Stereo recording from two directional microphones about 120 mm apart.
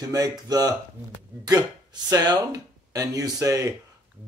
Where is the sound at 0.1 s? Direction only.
30° right (ahead or behind).